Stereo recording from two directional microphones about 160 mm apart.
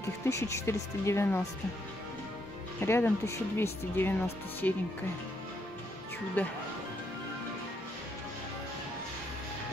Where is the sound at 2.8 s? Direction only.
15° left (ahead or behind).